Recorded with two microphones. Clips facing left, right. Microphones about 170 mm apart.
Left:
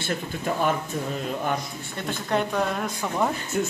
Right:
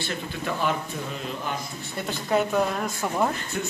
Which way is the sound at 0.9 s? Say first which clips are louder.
Left 4 dB; 50° left (ahead or behind).